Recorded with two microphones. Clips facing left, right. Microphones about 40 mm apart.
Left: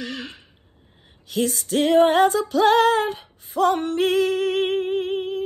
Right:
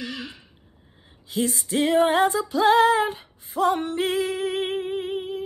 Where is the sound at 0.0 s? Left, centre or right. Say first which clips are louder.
Left 2 dB; left.